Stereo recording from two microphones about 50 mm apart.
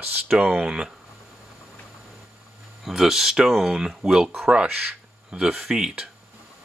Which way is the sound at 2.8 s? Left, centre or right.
Centre.